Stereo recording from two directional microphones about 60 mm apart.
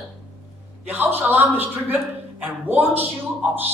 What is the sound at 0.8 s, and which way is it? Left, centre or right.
A man's voice, right.